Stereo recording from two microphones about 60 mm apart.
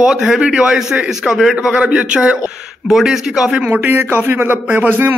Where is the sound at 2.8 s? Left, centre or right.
Centre.